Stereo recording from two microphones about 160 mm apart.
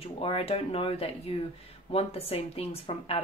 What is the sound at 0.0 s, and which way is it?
A woman's voice, 35° left (ahead or behind).